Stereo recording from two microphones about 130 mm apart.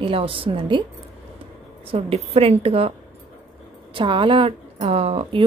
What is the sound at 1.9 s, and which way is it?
A woman's voice, 50° right (ahead or behind).